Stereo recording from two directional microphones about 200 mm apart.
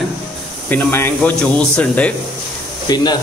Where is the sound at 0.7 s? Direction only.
10° left (ahead or behind).